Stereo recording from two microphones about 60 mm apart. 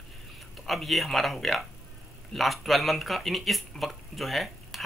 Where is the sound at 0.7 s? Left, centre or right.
Centre.